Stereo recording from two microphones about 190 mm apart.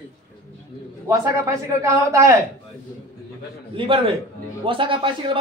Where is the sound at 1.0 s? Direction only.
15° right (ahead or behind).